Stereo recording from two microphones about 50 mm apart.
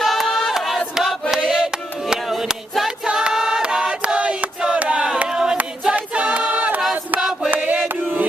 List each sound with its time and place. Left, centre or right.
0.0 s choir: centre
3.1 s choir: centre
4.7 s a sound: right
5.3 s choir: centre
5.9 s choir: right
7.5 s chant: right